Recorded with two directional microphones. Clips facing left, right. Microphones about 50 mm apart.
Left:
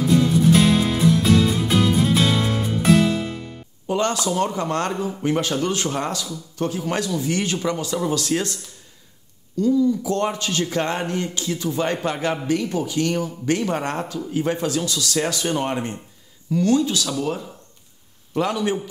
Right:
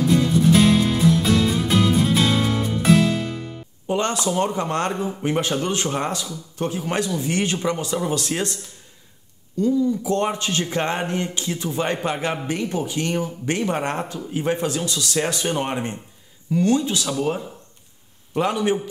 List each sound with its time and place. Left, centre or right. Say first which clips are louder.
0.5 s music: right 2 dB; centre
3.8 s speech: even; right
9.6 s speech: left 1 dB; right